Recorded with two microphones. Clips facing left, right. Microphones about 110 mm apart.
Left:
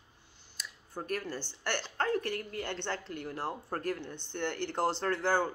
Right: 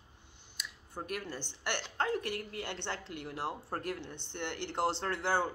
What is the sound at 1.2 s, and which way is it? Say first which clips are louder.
A man's voice: left 3 dB; 20° right (ahead or behind).